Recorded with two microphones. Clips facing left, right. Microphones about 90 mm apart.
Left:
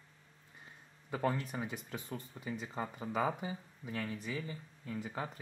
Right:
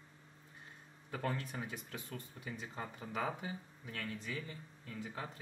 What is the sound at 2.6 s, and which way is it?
Speech, 20° left (ahead or behind).